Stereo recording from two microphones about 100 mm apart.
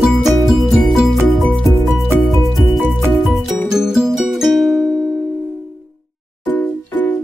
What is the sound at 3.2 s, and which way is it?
Music, 5° right (ahead or behind).